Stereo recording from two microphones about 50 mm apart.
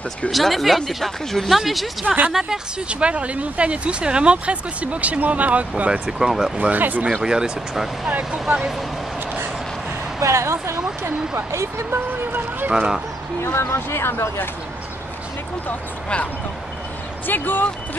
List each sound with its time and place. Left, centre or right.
0.3 s speech: centre
2.0 s speech: right
6.1 s speech: centre
6.6 s speech: right
7.2 s speech: centre
10.2 s speech: right
12.7 s speech: centre
13.4 s speech: left
17.3 s speech: left